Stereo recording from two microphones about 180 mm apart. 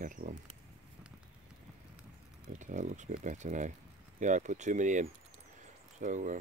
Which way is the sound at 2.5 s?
45° right (ahead or behind).